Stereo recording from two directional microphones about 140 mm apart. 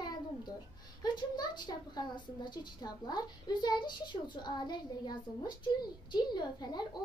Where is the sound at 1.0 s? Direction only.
30° left (ahead or behind).